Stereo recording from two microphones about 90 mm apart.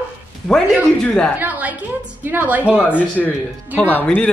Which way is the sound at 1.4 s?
15° right (ahead or behind).